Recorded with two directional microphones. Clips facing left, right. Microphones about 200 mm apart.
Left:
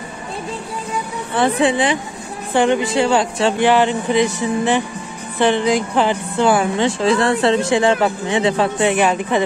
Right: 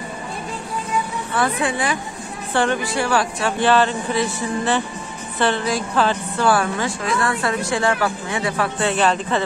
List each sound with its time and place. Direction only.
1.3 s a woman's voice: 25° left (ahead or behind)